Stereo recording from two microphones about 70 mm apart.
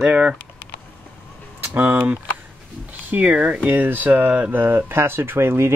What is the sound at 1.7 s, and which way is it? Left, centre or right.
Speech, right.